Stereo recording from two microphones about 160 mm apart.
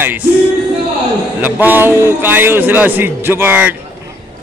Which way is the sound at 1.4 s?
10° right (ahead or behind).